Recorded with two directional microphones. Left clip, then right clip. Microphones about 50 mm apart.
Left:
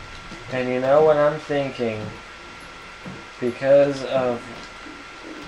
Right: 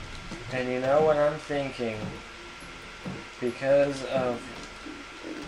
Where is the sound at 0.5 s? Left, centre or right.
Centre.